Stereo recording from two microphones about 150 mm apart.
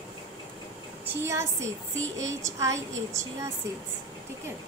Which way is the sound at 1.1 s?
20° right (ahead or behind).